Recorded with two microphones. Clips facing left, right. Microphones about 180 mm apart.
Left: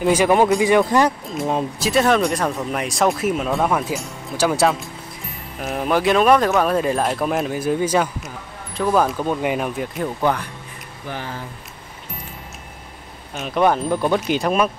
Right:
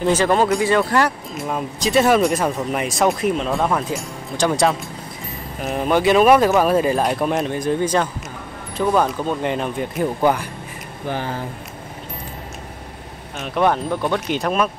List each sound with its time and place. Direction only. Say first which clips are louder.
0.0 s speech: left 1 dB; 10° left (ahead or behind)
1.8 s speech: right 3 dB; centre (ahead or behind)
13.4 s speech: left 1 dB; centre (ahead or behind)